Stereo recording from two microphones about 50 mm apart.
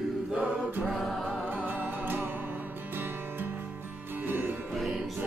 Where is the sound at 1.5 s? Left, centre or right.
Right.